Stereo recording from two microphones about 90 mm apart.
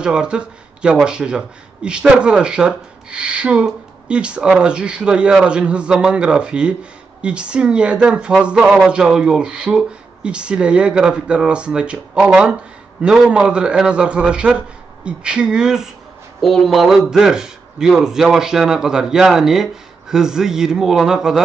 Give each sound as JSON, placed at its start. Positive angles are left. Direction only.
{"t": 0.0, "sound": "a man's voice", "side_deg": -10}